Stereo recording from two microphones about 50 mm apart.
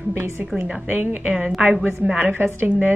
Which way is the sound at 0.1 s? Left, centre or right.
Right.